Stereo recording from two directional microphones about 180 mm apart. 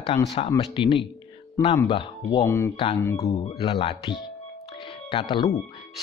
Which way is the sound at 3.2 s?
30° left (ahead or behind).